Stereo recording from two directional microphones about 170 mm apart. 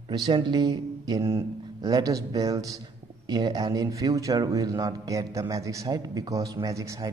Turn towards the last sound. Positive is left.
turn(degrees=-20)  # may be behind; listen again after turning